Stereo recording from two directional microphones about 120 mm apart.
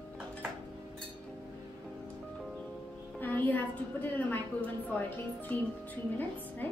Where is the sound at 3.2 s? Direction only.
15° left (ahead or behind).